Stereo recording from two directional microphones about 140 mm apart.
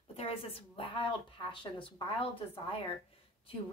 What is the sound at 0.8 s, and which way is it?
Speech, 35° left (ahead or behind).